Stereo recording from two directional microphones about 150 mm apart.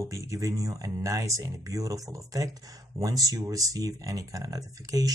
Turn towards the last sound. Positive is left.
turn(degrees=-25)  # may be behind; listen again after turning